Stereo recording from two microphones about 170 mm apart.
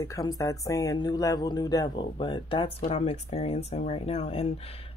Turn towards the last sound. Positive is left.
turn(degrees=40)  # may be behind; listen again after turning